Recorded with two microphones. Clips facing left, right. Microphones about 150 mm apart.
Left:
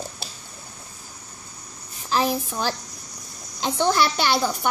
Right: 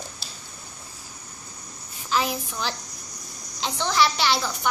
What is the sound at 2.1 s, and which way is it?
A child's voice, 40° left (ahead or behind).